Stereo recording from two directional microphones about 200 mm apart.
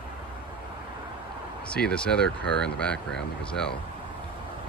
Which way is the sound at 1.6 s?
5° left (ahead or behind).